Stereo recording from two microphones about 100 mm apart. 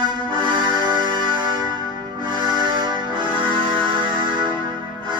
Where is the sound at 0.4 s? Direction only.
55° right (ahead or behind).